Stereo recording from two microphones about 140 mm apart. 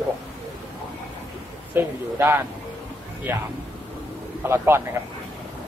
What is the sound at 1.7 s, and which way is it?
A man's voice, 15° right (ahead or behind).